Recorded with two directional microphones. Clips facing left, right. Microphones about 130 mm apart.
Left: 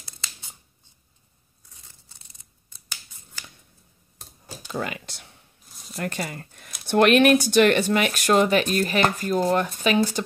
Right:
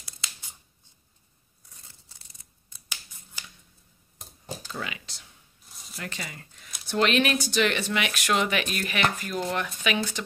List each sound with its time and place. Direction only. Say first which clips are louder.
4.6 s speech: left 9 dB; 45° left (ahead or behind)
5.7 s a sound: left 3 dB; centre (ahead or behind)
5.9 s speech: left 8 dB; 50° left (ahead or behind)